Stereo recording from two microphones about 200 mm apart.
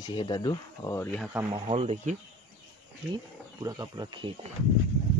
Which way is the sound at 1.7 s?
30° right (ahead or behind).